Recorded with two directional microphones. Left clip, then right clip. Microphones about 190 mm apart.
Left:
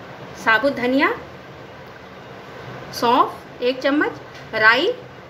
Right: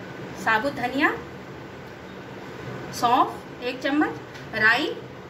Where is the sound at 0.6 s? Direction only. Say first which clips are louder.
Left 6 dB; 55° left (ahead or behind).